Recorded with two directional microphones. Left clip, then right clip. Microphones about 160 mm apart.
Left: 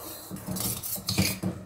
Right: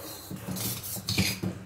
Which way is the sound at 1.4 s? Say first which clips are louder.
Left 2 dB; 20° left (ahead or behind).